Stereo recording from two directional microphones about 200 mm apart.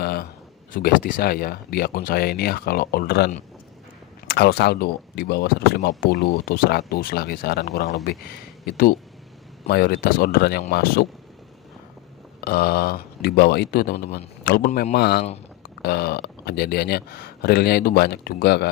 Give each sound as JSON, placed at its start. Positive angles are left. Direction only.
{"t": 0.0, "sound": "a sound", "side_deg": 50}
{"t": 0.7, "sound": "speech", "side_deg": 40}
{"t": 4.3, "sound": "speech", "side_deg": 55}
{"t": 12.4, "sound": "speech", "side_deg": 50}